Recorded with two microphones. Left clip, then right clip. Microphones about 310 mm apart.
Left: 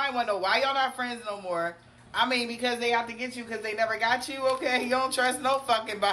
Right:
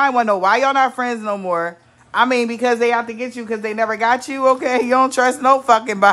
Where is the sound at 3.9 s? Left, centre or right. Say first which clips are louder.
Right 9 dB; centre.